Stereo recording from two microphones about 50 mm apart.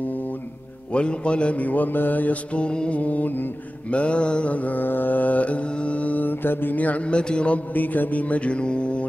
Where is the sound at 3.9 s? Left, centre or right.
Left.